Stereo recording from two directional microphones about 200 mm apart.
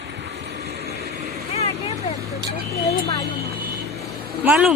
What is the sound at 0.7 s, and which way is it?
Vehicle, 50° right (ahead or behind).